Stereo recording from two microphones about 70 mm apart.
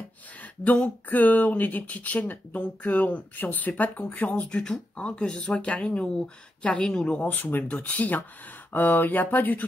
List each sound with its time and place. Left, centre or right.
0.4 s speech: left
4.5 s speech: centre
7.2 s speech: left